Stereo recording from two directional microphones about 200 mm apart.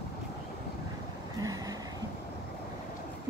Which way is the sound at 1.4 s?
15° right (ahead or behind).